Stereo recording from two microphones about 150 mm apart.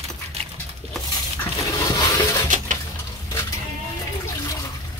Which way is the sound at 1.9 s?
25° left (ahead or behind).